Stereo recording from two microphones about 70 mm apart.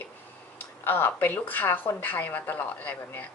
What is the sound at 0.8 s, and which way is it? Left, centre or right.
Speech, left.